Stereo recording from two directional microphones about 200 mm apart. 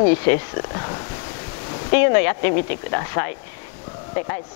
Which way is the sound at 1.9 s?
15° left (ahead or behind).